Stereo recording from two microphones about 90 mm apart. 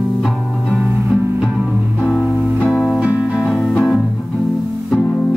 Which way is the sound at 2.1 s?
15° right (ahead or behind).